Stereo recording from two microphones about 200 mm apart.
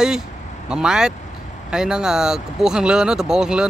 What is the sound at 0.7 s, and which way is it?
Speech, 5° right (ahead or behind).